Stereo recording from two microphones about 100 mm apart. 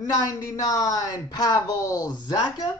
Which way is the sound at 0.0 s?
40° left (ahead or behind).